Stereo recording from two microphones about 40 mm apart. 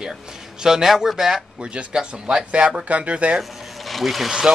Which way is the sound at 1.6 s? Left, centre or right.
Right.